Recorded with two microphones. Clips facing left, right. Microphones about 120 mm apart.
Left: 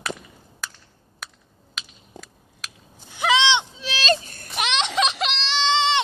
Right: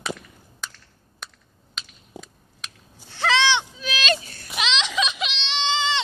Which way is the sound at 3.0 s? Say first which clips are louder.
Left 1 dB; 15° left (ahead or behind).